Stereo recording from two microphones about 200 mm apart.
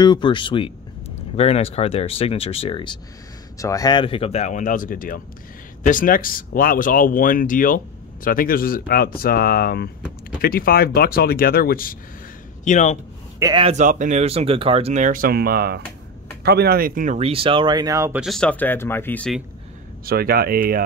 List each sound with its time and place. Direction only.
0.0 s speech: 25° left (ahead or behind)
13.4 s speech: 25° right (ahead or behind)
18.2 s speech: 5° left (ahead or behind)
20.1 s speech: 50° right (ahead or behind)